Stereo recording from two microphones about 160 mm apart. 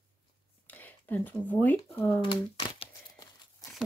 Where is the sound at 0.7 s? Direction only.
10° left (ahead or behind).